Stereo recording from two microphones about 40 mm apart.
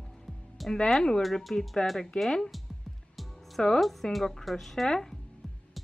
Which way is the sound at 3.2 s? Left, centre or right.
Centre.